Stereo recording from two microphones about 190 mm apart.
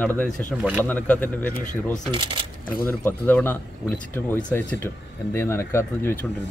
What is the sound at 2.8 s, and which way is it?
Speech, 10° left (ahead or behind).